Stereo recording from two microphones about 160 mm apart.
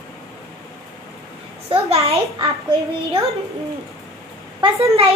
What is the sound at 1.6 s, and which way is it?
Speech, 40° right (ahead or behind).